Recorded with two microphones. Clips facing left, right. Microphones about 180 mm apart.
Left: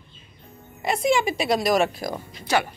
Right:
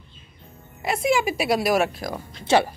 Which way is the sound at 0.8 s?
5° right (ahead or behind).